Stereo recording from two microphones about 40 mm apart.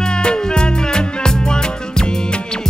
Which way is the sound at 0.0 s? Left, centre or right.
Left.